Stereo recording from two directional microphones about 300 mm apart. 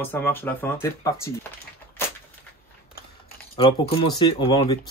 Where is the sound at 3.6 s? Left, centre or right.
Centre.